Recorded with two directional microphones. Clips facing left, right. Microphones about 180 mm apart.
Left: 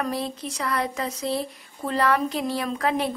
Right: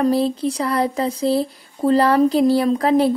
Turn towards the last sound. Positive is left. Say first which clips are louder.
# right 9 dB
turn(degrees=-35)  # may be behind; listen again after turning